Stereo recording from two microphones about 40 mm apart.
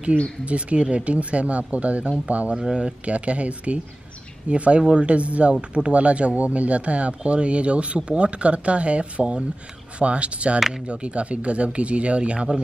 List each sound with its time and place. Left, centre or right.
0.5 s speech: right
2.5 s speech: right
3.1 s speech: right